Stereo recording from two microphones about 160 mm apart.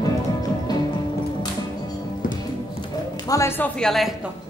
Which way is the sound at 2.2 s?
60° left (ahead or behind).